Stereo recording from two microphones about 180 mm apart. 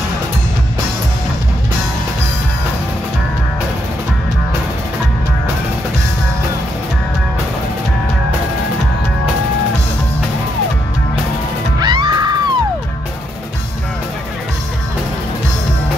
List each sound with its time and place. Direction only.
11.8 s music: 25° right (ahead or behind)